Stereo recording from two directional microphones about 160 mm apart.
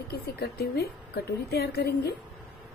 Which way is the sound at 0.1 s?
85° left.